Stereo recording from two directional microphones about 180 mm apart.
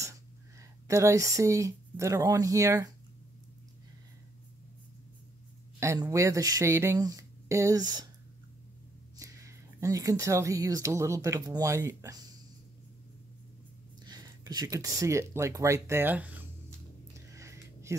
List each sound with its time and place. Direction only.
0.6 s speech: 15° right (ahead or behind)
5.8 s speech: 15° right (ahead or behind)
9.1 s speech: 15° right (ahead or behind)
14.0 s speech: 20° right (ahead or behind)
17.3 s a sound: 15° right (ahead or behind)